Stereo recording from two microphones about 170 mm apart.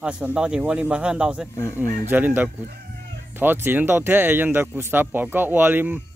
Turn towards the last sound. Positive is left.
turn(degrees=-10)  # may be behind; listen again after turning